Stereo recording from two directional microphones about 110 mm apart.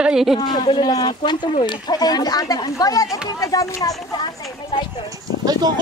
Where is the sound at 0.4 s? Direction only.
40° left (ahead or behind).